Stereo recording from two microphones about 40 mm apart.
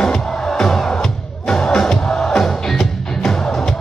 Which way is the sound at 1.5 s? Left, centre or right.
Centre.